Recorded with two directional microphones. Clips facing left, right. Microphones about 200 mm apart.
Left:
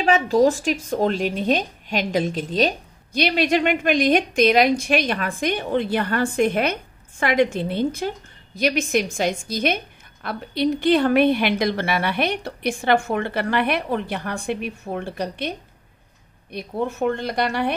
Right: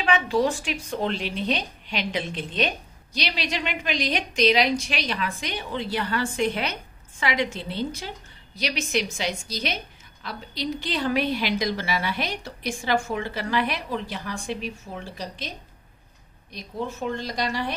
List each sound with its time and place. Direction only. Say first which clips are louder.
0.0 s a woman's voice: left 6 dB; 40° left (ahead or behind)
3.1 s a woman's voice: left 10 dB; 55° left (ahead or behind)
16.5 s a woman's voice: left 6 dB; 60° left (ahead or behind)